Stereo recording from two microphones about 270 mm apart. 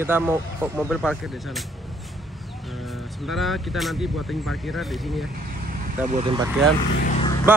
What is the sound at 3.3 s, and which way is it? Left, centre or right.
Speech, centre.